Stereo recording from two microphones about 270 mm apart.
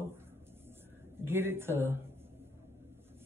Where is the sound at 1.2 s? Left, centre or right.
Centre.